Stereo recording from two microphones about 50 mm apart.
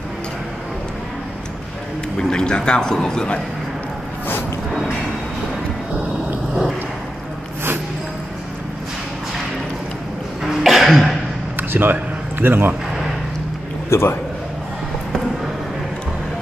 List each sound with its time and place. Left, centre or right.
2.1 s a man's voice: centre
10.4 s cough: centre
11.7 s a man's voice: right
13.8 s a man's voice: left